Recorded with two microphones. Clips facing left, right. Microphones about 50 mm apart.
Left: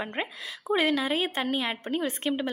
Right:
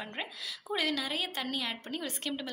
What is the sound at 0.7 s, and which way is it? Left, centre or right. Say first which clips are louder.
A woman's voice: left 7 dB; left.